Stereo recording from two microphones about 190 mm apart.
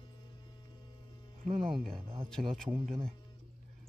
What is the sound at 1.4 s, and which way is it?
Speech, 40° right (ahead or behind).